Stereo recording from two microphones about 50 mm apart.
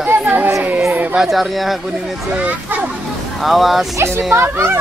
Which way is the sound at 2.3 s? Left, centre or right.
Right.